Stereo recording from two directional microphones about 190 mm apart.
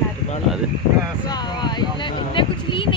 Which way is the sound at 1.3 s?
25° left (ahead or behind).